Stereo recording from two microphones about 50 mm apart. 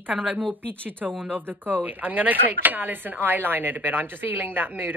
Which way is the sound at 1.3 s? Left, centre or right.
Right.